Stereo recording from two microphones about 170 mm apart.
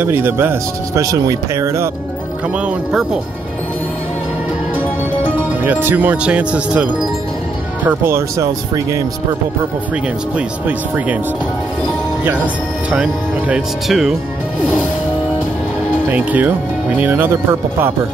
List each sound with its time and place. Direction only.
0.0 s speech: 15° right (ahead or behind)
2.6 s speech: 5° right (ahead or behind)
5.6 s speech: 10° right (ahead or behind)
12.9 s speech: 5° right (ahead or behind)
16.1 s speech: 10° right (ahead or behind)